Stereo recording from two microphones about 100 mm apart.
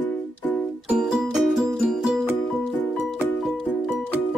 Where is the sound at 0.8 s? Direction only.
10° right (ahead or behind).